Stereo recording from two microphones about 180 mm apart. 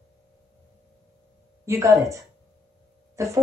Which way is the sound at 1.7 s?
15° right (ahead or behind).